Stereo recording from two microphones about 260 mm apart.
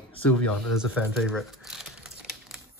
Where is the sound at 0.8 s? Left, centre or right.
Centre.